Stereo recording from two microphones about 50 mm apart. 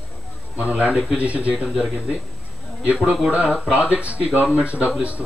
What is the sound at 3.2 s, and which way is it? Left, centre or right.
Speech, right.